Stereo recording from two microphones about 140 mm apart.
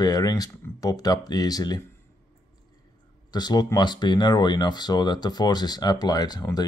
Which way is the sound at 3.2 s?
30° left (ahead or behind).